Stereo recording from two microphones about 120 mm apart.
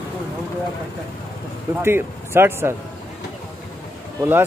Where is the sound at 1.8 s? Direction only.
20° right (ahead or behind).